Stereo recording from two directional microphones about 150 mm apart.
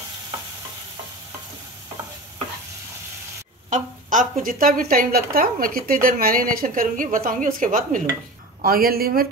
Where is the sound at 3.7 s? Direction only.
60° right (ahead or behind).